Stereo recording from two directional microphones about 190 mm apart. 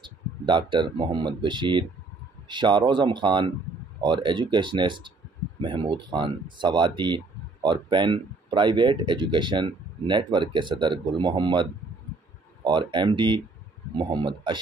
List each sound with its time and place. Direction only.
0.0 s speech: 25° right (ahead or behind)
12.6 s speech: 25° right (ahead or behind)